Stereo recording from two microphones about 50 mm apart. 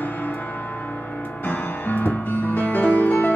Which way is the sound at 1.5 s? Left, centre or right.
Left.